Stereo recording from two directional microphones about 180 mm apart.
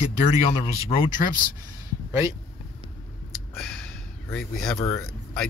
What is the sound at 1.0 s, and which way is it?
Speech, 45° left (ahead or behind).